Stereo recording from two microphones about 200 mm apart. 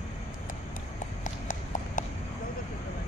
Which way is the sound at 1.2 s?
40° left (ahead or behind).